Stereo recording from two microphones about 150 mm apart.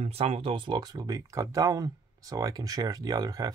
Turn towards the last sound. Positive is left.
turn(degrees=-25)  # may be behind; listen again after turning